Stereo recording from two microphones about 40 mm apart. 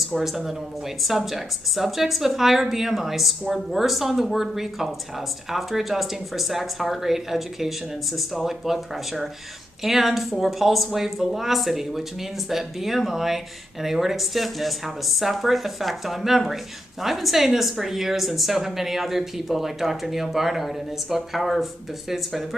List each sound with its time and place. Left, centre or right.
0.0 s speech: centre